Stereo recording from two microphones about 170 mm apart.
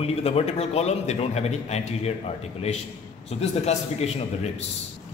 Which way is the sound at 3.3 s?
40° left (ahead or behind).